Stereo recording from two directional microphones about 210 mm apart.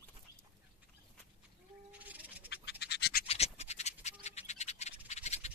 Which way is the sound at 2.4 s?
50° left (ahead or behind).